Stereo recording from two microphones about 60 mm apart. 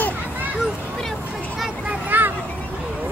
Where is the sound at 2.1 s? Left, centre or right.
Right.